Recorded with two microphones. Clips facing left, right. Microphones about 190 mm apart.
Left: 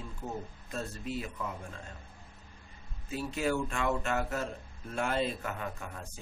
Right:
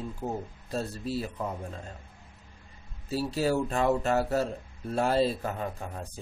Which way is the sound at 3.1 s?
35° right (ahead or behind).